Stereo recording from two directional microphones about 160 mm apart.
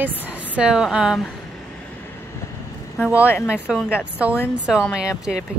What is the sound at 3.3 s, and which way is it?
Speech, 15° left (ahead or behind).